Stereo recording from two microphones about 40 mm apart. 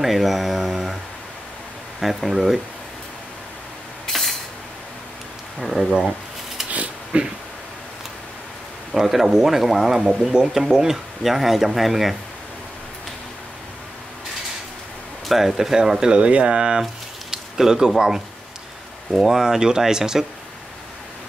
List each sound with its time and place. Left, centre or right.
0.0 s speech: centre
2.0 s speech: centre
4.1 s a sound: centre
5.6 s speech: centre
6.6 s a sound: centre
7.1 s speech: right
8.9 s speech: centre
15.2 s speech: centre